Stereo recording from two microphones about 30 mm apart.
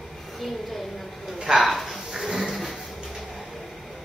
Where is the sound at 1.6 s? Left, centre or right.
Centre.